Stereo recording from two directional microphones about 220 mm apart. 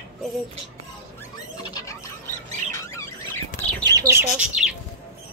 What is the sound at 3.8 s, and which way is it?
Bird, 15° right (ahead or behind).